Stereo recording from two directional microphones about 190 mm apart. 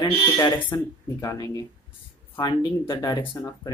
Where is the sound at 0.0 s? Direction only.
20° left (ahead or behind).